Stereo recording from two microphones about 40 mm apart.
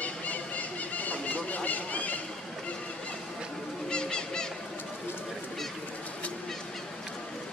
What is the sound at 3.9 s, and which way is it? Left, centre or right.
Goose, centre.